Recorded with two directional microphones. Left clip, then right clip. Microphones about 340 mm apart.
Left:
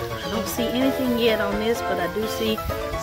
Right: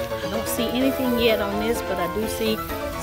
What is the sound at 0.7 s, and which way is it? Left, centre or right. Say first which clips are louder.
Speech: even; centre.